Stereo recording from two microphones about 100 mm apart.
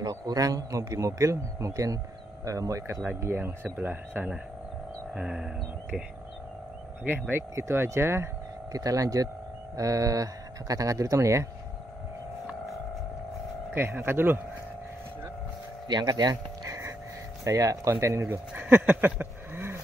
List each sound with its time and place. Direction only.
0.0 s speech: 40° right (ahead or behind); by 5.5 s 10° right (ahead or behind)
7.1 s speech: 20° right (ahead or behind)
13.7 s speech: 20° right (ahead or behind)
15.9 s speech: 45° right (ahead or behind)
17.5 s speech: 35° right (ahead or behind)
18.5 s speech: 15° right (ahead or behind)